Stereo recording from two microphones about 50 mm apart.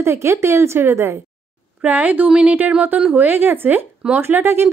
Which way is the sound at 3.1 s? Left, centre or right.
Right.